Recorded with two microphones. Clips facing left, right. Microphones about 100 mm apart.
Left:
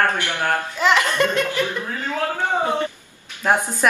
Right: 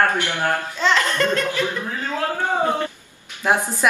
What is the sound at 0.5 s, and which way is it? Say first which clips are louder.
Speech: left 4 dB; 15° left (ahead or behind).